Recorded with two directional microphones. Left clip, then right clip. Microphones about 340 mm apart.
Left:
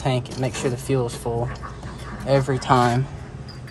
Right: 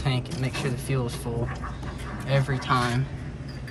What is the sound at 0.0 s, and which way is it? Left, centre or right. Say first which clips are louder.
Speech: left 6 dB; left.